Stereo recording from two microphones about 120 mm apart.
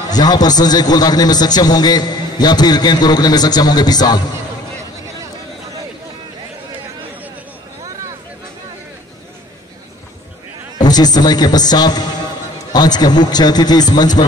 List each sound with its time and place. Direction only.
0.1 s a man's voice: 35° left (ahead or behind)
10.8 s a man's voice: 35° left (ahead or behind)